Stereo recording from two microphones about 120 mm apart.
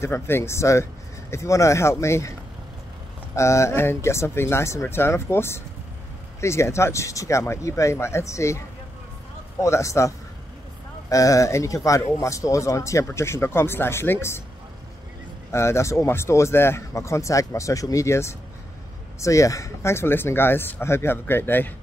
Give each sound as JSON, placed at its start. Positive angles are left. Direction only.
{"t": 0.0, "sound": "a man's voice", "side_deg": 20}
{"t": 3.3, "sound": "a man's voice", "side_deg": 25}
{"t": 15.5, "sound": "a man's voice", "side_deg": 20}